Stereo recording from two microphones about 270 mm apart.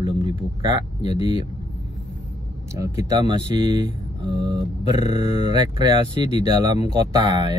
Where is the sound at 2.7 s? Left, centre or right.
Centre.